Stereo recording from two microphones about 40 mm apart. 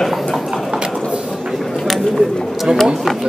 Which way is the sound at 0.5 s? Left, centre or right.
Centre.